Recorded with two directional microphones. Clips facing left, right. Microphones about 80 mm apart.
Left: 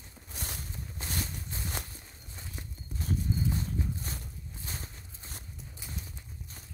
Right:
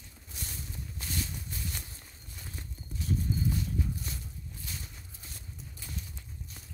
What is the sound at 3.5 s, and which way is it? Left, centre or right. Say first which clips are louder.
Walk: even; left.